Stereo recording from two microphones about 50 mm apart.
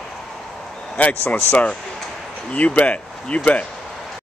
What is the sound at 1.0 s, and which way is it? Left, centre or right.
Speech, left.